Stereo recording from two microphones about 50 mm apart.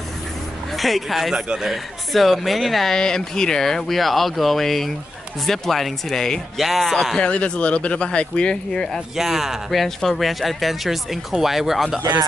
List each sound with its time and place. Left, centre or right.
0.7 s speech: centre
1.3 s a man's voice: centre
1.7 s speech: centre
7.2 s speech: left
9.1 s speech: centre